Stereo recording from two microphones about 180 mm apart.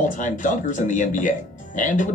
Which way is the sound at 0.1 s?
45° left (ahead or behind).